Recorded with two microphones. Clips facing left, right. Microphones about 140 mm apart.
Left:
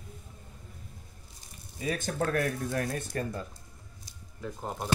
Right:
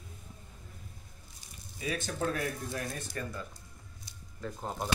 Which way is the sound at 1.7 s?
45° left (ahead or behind).